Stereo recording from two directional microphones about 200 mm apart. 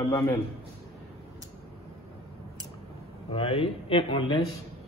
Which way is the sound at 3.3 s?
30° left (ahead or behind).